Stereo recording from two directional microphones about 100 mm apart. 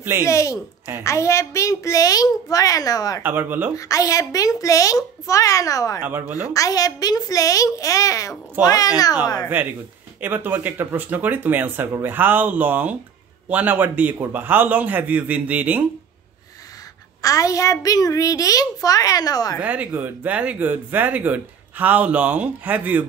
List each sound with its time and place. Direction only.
0.2 s a child's voice: 30° left (ahead or behind)
3.2 s speech: 20° right (ahead or behind)
3.7 s a child's voice: 35° left (ahead or behind)
6.0 s speech: 15° right (ahead or behind)
6.4 s a child's voice: 35° left (ahead or behind)
9.5 s speech: 20° right (ahead or behind)
17.2 s a child's voice: 35° left (ahead or behind)
19.6 s speech: 15° right (ahead or behind)